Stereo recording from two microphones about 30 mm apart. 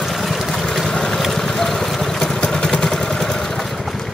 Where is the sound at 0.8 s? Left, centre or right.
Left.